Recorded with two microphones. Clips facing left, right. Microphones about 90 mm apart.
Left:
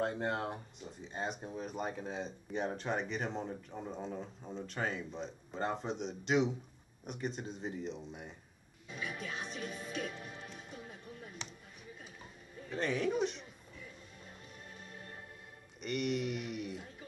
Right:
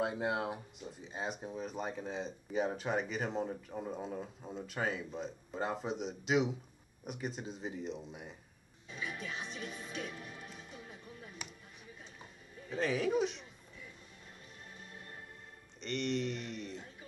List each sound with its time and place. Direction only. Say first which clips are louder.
0.0 s speech: right 1 dB; 5° right (ahead or behind)
9.4 s speech: left 1 dB; 15° right (ahead or behind)
10.0 s music: left 2 dB; 25° left (ahead or behind)
12.6 s speech: right 1 dB; centre (ahead or behind)
15.8 s speech: even; 5° left (ahead or behind)